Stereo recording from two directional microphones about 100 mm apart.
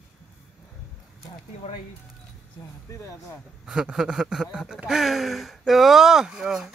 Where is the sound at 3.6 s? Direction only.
5° right (ahead or behind).